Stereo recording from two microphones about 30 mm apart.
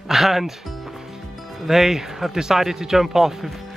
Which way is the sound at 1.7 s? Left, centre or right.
Centre.